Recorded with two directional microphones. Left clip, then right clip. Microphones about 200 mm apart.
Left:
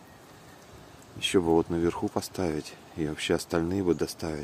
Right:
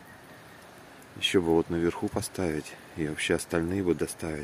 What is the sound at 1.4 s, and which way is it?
Speech, 5° left (ahead or behind).